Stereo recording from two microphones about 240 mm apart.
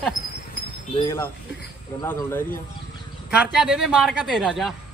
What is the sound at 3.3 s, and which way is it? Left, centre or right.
A man's voice, centre.